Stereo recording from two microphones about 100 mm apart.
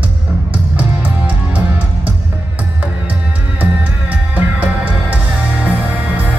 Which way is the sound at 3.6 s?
15° right (ahead or behind).